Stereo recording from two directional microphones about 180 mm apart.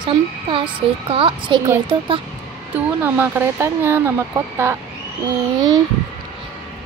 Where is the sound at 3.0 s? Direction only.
10° right (ahead or behind).